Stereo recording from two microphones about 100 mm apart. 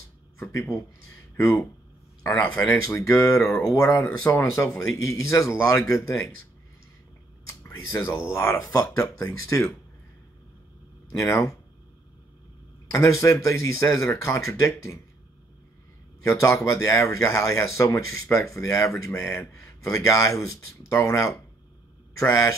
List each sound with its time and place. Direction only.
0.4 s speech: 30° left (ahead or behind)
2.4 s speech: 15° left (ahead or behind)
3.0 s speech: 30° left (ahead or behind)
7.4 s a sound: 30° left (ahead or behind)
8.3 s speech: 25° left (ahead or behind)
11.1 s speech: 30° left (ahead or behind)
12.9 s speech: 30° left (ahead or behind)
16.3 s speech: 30° left (ahead or behind)
19.1 s speech: 5° left (ahead or behind)
19.6 s speech: 30° left (ahead or behind)